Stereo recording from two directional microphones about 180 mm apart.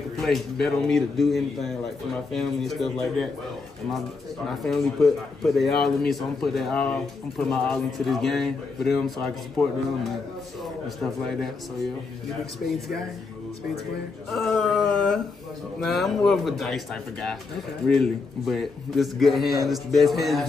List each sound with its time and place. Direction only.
0.2 s a man's voice: centre (ahead or behind)
4.5 s a man's voice: centre (ahead or behind)
11.0 s a man's voice: centre (ahead or behind)
12.6 s speech: 55° left (ahead or behind)
14.3 s a man's voice: centre (ahead or behind)